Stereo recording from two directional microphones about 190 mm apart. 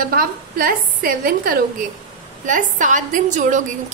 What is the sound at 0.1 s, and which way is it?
A woman's voice, 50° right (ahead or behind).